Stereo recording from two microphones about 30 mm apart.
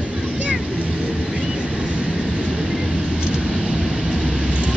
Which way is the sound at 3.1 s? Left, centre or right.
Right.